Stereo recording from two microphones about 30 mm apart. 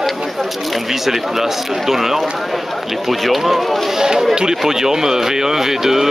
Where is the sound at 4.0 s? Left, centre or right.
Centre.